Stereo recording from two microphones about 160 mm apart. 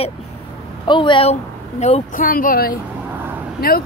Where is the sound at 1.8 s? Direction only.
45° left (ahead or behind).